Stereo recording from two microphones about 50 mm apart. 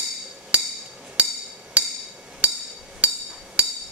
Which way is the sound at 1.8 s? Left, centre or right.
Right.